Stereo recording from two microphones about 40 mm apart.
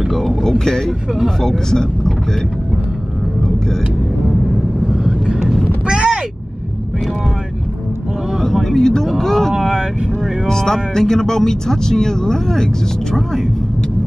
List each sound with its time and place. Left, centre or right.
0.1 s a sound: centre
1.4 s speech: centre
4.8 s vehicle: centre
5.9 s artillery fire: right
8.6 s a sound: centre
9.5 s vehicle: centre
10.4 s speech: centre